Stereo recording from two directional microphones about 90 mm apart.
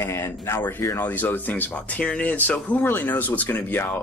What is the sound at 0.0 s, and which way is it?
Speech, 30° left (ahead or behind).